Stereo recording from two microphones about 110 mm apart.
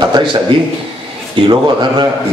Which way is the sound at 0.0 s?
45° right (ahead or behind).